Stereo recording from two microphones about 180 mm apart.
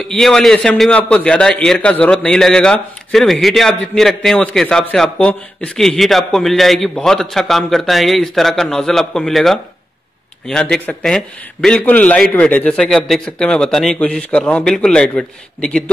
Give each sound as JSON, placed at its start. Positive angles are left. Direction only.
{"t": 0.1, "sound": "a man's voice", "side_deg": 0}